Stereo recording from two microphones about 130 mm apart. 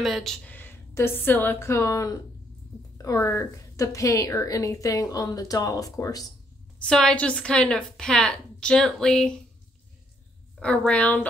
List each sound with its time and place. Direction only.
0.0 s a woman's voice: centre (ahead or behind); by 6.3 s 25° left (ahead or behind)
6.8 s a woman's voice: 5° left (ahead or behind)
10.6 s a woman's voice: 10° left (ahead or behind)